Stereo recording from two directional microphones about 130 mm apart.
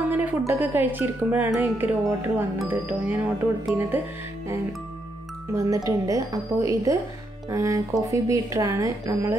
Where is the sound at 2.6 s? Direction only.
15° right (ahead or behind).